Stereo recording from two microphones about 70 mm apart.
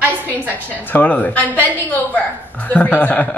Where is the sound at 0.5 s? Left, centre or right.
Left.